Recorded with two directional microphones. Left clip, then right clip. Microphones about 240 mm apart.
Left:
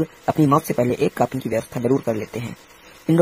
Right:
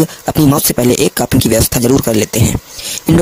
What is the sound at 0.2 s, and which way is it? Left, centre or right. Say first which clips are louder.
Speech: right 2 dB; right.